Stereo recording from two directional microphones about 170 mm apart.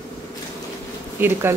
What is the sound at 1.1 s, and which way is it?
Speech, 15° right (ahead or behind).